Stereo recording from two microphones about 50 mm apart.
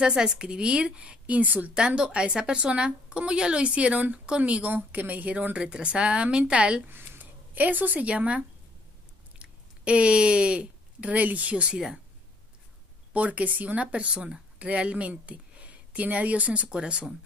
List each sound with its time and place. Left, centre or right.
0.0 s a woman's voice: centre; by 1.7 s right
1.7 s a woman's voice: centre
6.9 s speech: right
13.1 s a woman's voice: right